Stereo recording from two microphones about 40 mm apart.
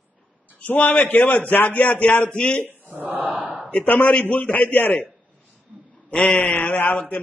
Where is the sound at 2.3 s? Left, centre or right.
Left.